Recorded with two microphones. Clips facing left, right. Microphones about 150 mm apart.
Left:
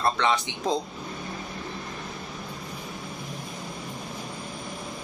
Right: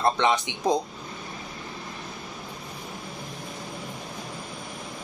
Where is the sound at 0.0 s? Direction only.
20° right (ahead or behind).